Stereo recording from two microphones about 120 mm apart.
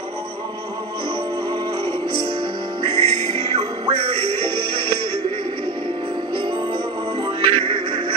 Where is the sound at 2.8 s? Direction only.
45° right (ahead or behind).